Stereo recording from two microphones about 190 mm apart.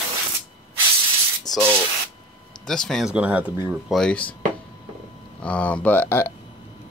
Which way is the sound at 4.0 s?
5° left (ahead or behind).